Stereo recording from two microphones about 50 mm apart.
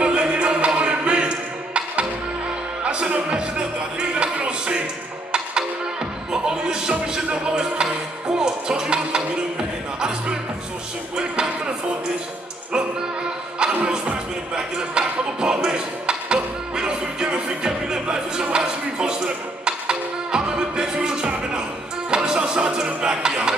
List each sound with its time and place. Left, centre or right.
0.0 s music: right
13.7 s music: centre